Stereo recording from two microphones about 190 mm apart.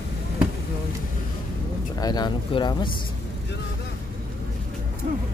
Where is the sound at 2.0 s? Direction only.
20° left (ahead or behind).